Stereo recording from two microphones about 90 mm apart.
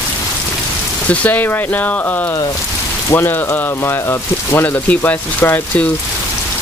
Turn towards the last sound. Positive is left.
turn(degrees=20)  # may be behind; listen again after turning